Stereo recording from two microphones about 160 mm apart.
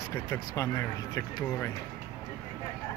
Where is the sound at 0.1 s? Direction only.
20° left (ahead or behind).